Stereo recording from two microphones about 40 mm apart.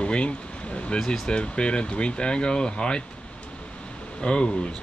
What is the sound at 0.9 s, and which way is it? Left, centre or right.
Speech, centre.